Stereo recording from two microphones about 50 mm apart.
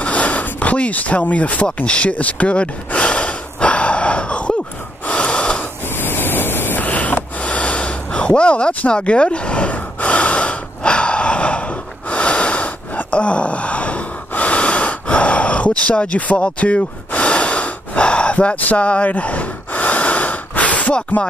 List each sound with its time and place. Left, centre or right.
0.0 s a sound: left
5.0 s gasp: left
5.9 s waves: left
6.9 s snort: left
9.8 s gasp: left